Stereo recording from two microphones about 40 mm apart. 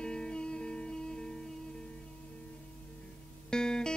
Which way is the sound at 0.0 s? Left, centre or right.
Left.